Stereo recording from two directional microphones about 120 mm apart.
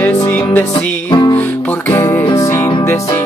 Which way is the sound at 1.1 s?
35° left (ahead or behind).